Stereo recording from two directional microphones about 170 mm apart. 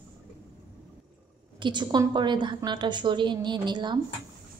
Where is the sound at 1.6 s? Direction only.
25° right (ahead or behind).